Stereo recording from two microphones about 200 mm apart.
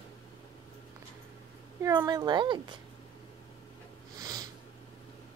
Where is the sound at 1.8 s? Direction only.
15° right (ahead or behind).